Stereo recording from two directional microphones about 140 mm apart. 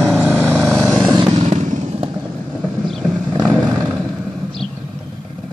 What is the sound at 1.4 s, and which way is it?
Motorcycle, 55° right (ahead or behind).